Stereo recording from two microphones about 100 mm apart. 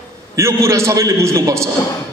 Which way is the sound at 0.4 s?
30° right (ahead or behind).